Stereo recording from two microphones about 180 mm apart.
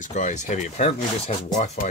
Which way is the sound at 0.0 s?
40° left (ahead or behind).